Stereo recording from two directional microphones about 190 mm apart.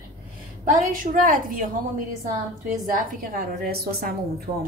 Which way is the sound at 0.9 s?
45° right (ahead or behind).